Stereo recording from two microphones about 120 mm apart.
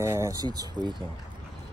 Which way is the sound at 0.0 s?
20° right (ahead or behind).